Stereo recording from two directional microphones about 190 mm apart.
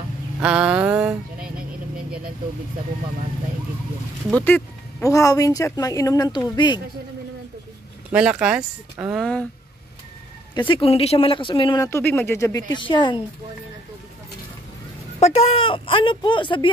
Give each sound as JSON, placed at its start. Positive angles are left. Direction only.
{"t": 0.4, "sound": "a sound", "side_deg": -5}
{"t": 4.3, "sound": "speech", "side_deg": 10}
{"t": 8.1, "sound": "speech", "side_deg": -5}
{"t": 9.2, "sound": "speech", "side_deg": 5}
{"t": 10.7, "sound": "speech", "side_deg": 30}
{"t": 15.1, "sound": "speech", "side_deg": 30}